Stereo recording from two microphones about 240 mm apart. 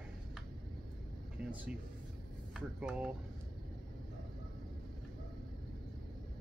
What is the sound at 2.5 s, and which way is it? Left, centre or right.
Speech, centre.